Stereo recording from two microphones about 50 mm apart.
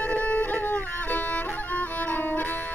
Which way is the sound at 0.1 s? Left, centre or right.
Left.